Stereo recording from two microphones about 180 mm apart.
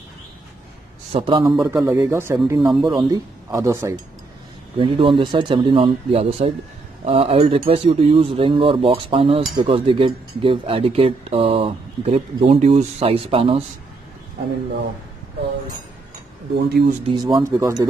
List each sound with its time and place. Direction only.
1.1 s speech: 30° right (ahead or behind)
1.4 s a man's voice: 15° right (ahead or behind)
4.7 s speech: 30° right (ahead or behind)
16.6 s speech: 65° right (ahead or behind)
17.1 s speech: 20° right (ahead or behind)